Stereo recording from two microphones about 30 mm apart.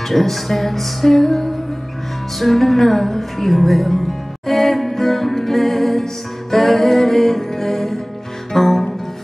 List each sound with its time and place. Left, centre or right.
0.1 s music: centre